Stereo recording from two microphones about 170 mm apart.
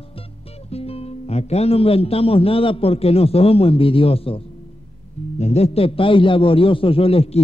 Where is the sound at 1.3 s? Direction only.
40° left (ahead or behind).